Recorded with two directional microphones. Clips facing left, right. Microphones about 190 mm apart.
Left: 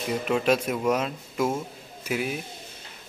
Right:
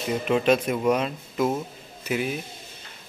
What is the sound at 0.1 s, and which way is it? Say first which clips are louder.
A man's voice: right 2 dB; 5° left (ahead or behind).